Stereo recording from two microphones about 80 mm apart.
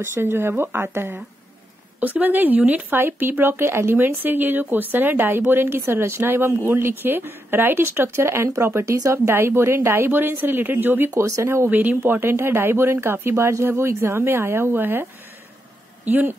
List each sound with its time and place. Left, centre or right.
0.0 s speech: right
11.1 s speech: right
16.1 s speech: right